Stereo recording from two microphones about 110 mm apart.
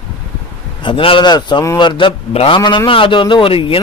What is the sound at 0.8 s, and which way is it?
A man's voice, 50° left (ahead or behind).